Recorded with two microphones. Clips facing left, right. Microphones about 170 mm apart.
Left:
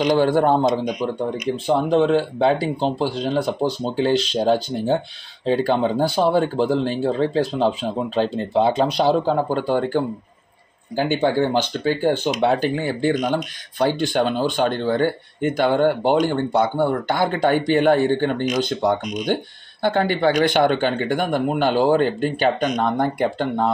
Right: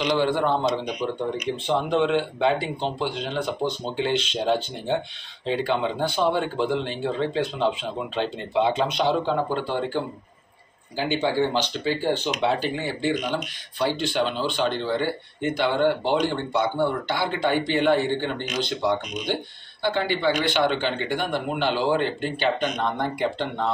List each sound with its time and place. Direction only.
0.0 s speech: 45° left (ahead or behind)